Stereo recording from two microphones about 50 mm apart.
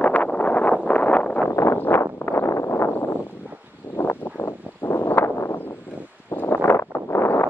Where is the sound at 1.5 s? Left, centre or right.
Left.